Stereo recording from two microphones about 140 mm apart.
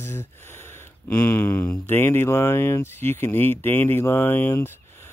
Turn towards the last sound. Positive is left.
turn(degrees=15)  # may be behind; listen again after turning